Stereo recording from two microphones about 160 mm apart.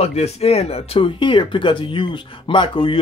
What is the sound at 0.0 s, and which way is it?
Speech, 40° left (ahead or behind).